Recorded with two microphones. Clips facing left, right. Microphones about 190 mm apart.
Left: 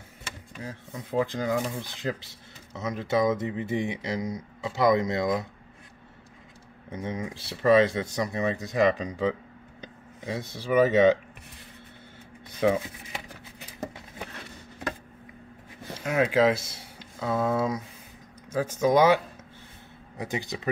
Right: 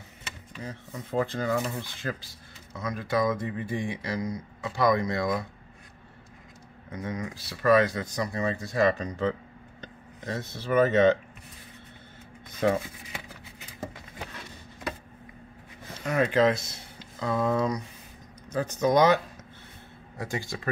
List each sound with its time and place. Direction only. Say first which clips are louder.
0.9 s speech: left 1 dB; 15° left (ahead or behind)
6.9 s speech: left 1 dB; 25° left (ahead or behind)
16.0 s speech: left 1 dB; 5° left (ahead or behind)